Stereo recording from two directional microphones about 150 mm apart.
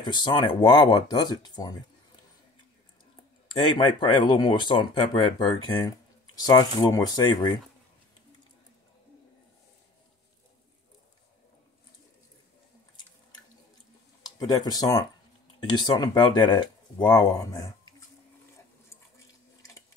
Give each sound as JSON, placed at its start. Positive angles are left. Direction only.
{"t": 0.0, "sound": "speech", "side_deg": 30}
{"t": 3.5, "sound": "speech", "side_deg": 35}
{"t": 14.2, "sound": "speech", "side_deg": 25}